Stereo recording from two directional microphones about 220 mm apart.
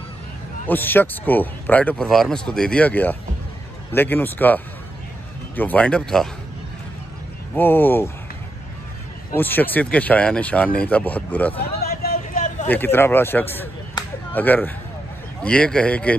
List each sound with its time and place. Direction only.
0.7 s speech: 10° left (ahead or behind)
5.6 s speech: 5° left (ahead or behind)
7.5 s speech: 10° left (ahead or behind)
9.3 s speech: 10° left (ahead or behind)
11.8 s a sound: 45° left (ahead or behind)
12.6 s speech: 10° left (ahead or behind)